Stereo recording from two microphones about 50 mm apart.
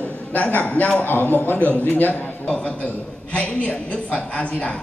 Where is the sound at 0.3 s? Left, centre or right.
Left.